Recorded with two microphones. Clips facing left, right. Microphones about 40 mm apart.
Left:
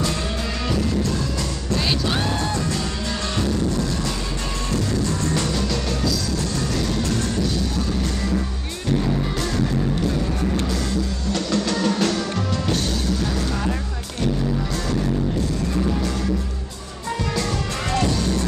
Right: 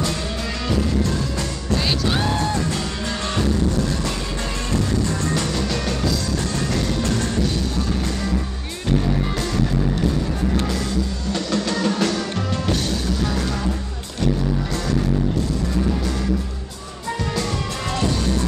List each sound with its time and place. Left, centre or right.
1.8 s music: centre
5.4 s music: right
11.3 s music: centre